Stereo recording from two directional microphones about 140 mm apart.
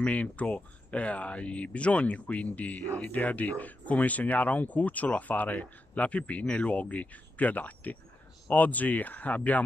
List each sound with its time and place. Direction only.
0.0 s speech: 10° left (ahead or behind)